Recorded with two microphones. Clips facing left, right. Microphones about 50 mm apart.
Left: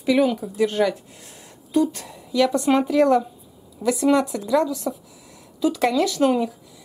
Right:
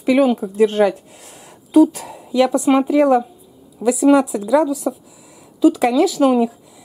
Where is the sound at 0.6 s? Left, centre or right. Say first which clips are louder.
Right 6 dB; centre.